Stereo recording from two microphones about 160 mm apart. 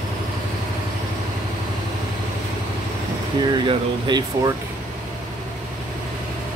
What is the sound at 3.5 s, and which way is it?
Speech, 25° right (ahead or behind).